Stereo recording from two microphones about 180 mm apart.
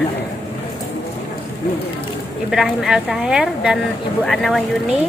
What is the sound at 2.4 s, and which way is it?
A woman's voice, centre (ahead or behind).